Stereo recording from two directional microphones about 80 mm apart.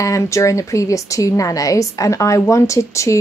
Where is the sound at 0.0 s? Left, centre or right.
Left.